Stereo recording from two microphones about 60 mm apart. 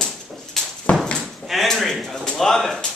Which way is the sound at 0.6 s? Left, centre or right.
Centre.